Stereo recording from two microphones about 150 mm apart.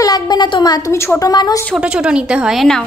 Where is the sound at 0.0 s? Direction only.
25° left (ahead or behind).